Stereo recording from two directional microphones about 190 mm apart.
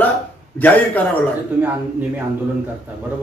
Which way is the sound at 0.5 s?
10° left (ahead or behind).